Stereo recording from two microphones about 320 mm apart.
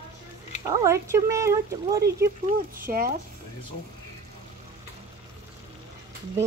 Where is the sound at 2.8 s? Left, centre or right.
Right.